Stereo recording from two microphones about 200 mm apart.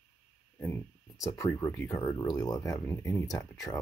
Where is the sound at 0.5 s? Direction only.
10° left (ahead or behind).